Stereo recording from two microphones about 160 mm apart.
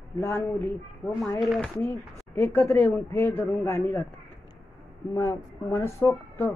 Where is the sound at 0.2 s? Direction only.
15° left (ahead or behind).